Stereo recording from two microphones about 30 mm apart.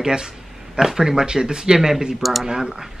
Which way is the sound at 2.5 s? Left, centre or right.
Right.